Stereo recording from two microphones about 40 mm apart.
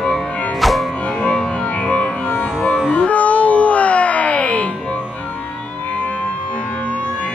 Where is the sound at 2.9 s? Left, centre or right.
Left.